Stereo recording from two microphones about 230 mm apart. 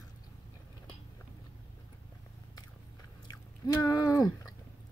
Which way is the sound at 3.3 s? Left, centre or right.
Centre.